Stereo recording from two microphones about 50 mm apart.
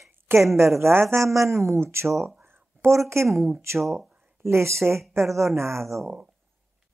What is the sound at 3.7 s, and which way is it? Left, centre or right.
Speech, centre.